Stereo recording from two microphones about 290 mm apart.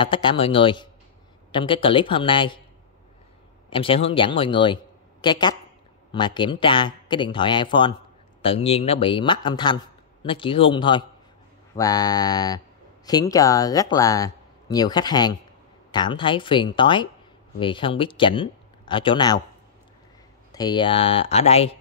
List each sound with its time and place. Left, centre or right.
0.0 s speech: centre
3.7 s speech: centre
20.5 s speech: centre